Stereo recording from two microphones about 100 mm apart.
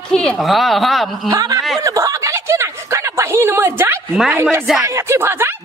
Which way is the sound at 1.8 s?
35° right (ahead or behind).